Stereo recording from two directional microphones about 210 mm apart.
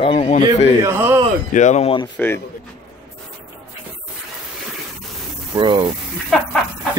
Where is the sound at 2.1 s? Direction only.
10° left (ahead or behind).